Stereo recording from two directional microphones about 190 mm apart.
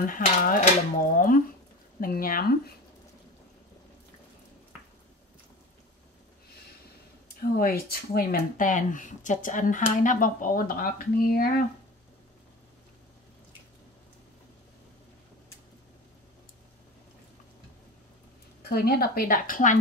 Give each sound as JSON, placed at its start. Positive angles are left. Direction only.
{"t": 0.0, "sound": "speech", "side_deg": 45}
{"t": 7.4, "sound": "speech", "side_deg": 50}
{"t": 18.6, "sound": "speech", "side_deg": 55}